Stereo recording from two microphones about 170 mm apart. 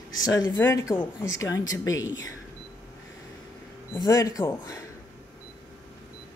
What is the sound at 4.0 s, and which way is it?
Speech, 20° left (ahead or behind).